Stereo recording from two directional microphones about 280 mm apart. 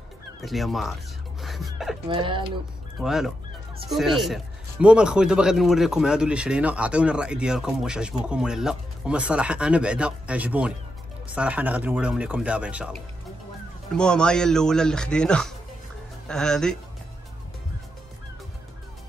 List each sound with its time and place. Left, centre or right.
0.4 s a man's voice: centre
1.4 s music: centre
2.0 s speech: centre
3.0 s a man's voice: centre
13.9 s a man's voice: centre